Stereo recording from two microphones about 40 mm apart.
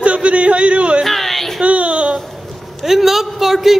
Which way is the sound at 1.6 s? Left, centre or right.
Right.